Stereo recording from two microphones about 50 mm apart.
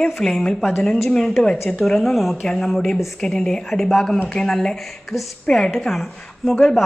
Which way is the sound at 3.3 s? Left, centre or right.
Centre.